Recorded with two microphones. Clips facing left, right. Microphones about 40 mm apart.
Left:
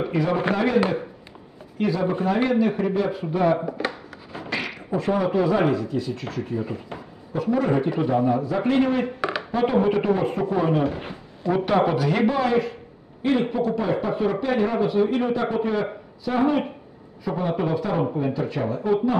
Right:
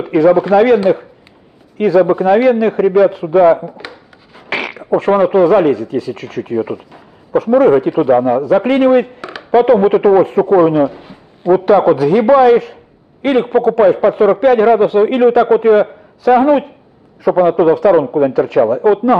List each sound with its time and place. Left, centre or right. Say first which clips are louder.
0.0 s a sound: right 13 dB; right
0.4 s a man's voice: right 13 dB; right
1.8 s a woman's voice: right 13 dB; right
4.5 s a sound: right 9 dB; right
4.8 s a man's voice: right 12 dB; right
9.5 s a woman's voice: right 13 dB; right
11.5 s a man's voice: right 11 dB; right
13.2 s a man's voice: right 10 dB; right
17.2 s speech: right 14 dB; right